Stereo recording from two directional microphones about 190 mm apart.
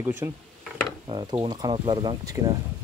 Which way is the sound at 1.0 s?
25° right (ahead or behind).